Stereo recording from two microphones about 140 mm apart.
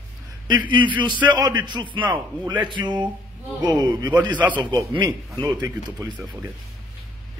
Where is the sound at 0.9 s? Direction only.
35° right (ahead or behind).